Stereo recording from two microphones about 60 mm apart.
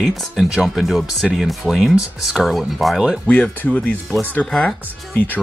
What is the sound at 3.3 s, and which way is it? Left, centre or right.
Speech, left.